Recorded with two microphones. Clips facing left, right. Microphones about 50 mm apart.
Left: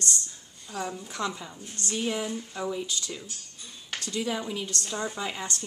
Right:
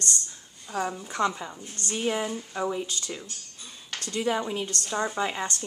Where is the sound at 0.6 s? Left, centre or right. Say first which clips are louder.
Right 4 dB; right.